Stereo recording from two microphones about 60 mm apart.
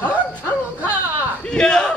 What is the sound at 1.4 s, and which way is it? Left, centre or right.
Speech, centre.